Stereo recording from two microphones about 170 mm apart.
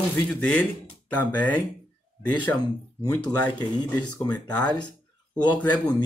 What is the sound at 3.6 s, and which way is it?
Speech, 25° left (ahead or behind).